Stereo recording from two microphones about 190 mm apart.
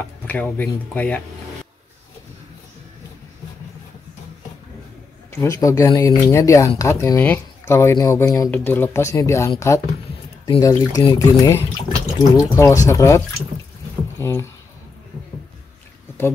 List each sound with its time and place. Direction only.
0.3 s speech: 10° left (ahead or behind)
5.3 s speech: 15° left (ahead or behind)